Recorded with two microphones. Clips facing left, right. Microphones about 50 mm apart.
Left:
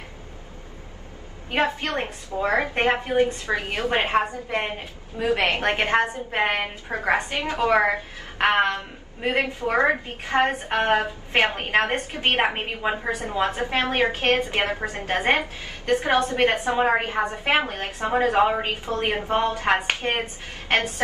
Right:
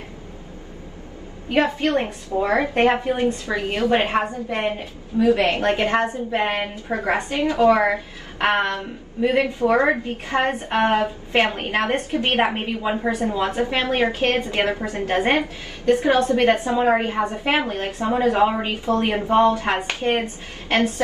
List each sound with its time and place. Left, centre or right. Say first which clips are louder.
1.5 s a woman's voice: right 5 dB; left
4.0 s a woman's voice: right 1 dB; right
4.5 s a woman's voice: right 3 dB; left